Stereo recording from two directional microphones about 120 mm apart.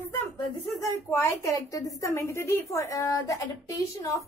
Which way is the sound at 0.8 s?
25° left (ahead or behind).